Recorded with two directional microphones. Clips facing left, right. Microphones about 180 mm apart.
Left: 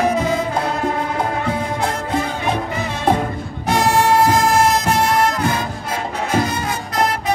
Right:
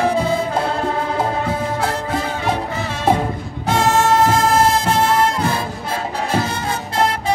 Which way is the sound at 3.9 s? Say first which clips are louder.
Even; 15° left (ahead or behind).